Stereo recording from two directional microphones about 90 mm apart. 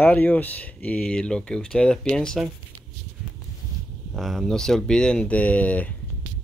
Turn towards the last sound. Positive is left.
turn(degrees=15)  # may be behind; listen again after turning